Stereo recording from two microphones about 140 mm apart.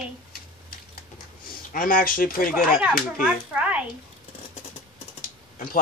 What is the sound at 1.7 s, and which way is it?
Speech, 90° left.